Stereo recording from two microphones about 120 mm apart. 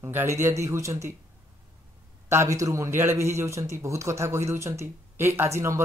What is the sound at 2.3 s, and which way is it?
A man's voice, 25° right (ahead or behind).